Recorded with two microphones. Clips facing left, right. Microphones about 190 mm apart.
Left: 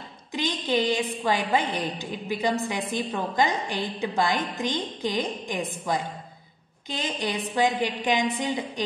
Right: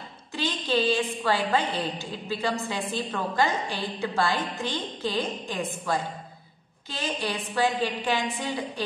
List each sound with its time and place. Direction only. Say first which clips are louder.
0.3 s a woman's voice: left 1 dB; 15° left (ahead or behind)